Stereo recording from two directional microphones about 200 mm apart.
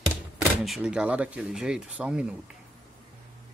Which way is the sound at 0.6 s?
5° right (ahead or behind).